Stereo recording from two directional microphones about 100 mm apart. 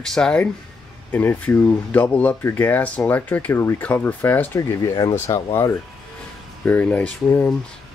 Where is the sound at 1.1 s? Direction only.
20° left (ahead or behind).